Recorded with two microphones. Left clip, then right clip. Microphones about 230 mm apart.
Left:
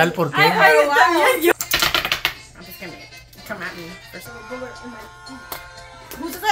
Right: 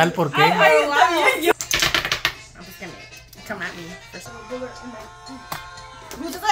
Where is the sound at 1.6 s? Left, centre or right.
Centre.